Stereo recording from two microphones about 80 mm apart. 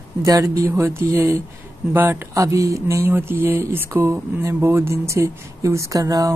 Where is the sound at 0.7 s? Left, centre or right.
Right.